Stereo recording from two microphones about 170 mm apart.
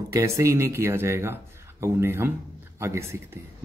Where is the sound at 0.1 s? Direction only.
20° right (ahead or behind).